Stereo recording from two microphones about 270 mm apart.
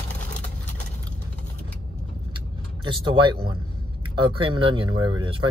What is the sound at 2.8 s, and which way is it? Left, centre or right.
Speech, centre.